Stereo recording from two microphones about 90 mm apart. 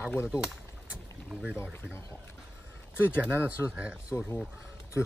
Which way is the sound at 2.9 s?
20° left (ahead or behind).